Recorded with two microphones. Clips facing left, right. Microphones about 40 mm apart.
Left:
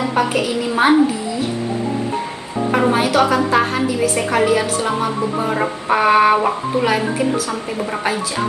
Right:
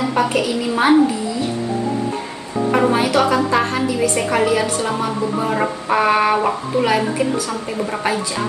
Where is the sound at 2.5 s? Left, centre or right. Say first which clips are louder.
Even; centre.